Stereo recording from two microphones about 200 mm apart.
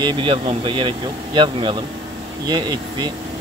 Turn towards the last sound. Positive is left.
turn(degrees=-20)  # may be behind; listen again after turning